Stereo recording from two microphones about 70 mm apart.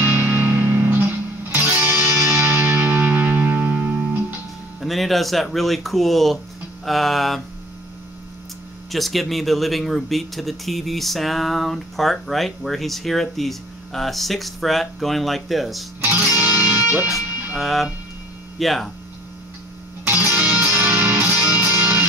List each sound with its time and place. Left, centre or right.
0.0 s music: right
4.7 s speech: centre
8.9 s speech: centre
16.0 s music: right
17.6 s speech: centre
20.1 s music: right